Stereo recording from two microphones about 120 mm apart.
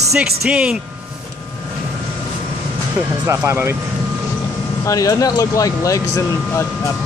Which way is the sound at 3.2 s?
20° right (ahead or behind).